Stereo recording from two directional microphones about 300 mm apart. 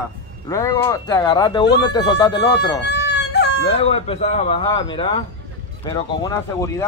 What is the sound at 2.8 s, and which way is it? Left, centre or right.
Baby cry, left.